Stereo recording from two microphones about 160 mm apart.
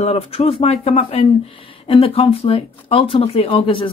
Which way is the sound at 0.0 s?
40° left (ahead or behind).